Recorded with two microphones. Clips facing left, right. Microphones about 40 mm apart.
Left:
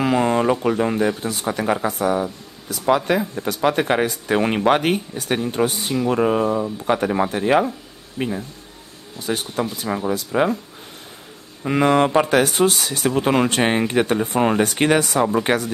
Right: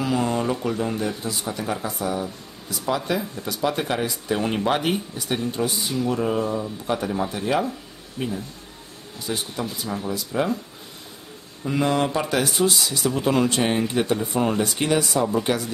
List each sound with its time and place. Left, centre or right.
0.0 s speech: left
3.1 s speech: left
11.6 s speech: left